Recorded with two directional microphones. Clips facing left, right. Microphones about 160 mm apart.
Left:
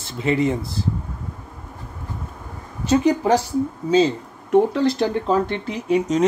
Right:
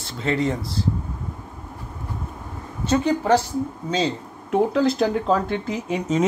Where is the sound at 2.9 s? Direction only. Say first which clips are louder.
Left 2 dB; 15° left (ahead or behind).